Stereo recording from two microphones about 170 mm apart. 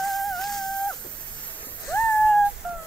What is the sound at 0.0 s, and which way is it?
Music, centre (ahead or behind).